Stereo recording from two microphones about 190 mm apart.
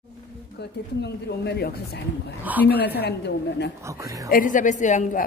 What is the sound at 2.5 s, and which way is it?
Speech, 10° right (ahead or behind).